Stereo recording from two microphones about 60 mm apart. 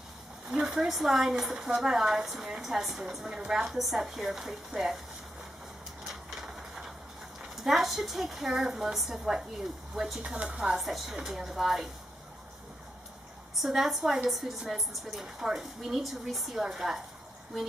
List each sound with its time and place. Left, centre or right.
0.5 s speech: centre
6.0 s a sound: centre
7.5 s speech: centre
10.2 s speech: centre
10.5 s speech: centre
13.6 s speech: centre